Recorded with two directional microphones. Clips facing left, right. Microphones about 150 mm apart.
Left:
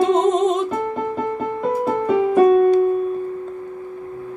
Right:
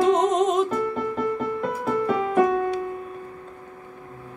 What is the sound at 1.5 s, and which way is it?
Music, 35° left (ahead or behind).